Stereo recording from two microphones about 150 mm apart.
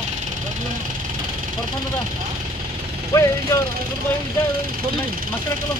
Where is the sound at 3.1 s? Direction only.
20° left (ahead or behind).